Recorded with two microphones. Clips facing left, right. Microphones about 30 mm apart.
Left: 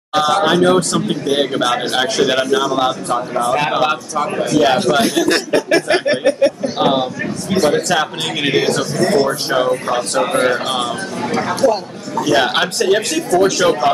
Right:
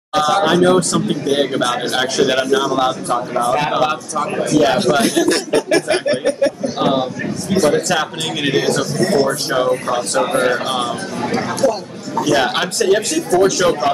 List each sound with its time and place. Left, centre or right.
0.1 s speech: centre
11.4 s speech: centre